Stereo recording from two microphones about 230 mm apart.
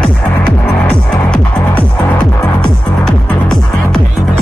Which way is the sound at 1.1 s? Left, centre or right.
Centre.